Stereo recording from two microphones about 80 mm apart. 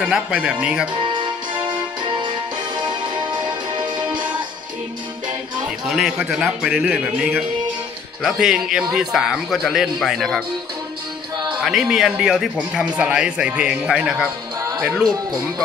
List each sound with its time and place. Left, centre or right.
0.0 s speech: centre
1.1 s music: right
5.9 s a man's voice: centre
6.9 s speech: centre
8.2 s a man's voice: centre
11.6 s speech: centre